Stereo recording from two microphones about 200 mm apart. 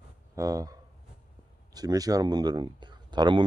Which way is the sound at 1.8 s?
20° right (ahead or behind).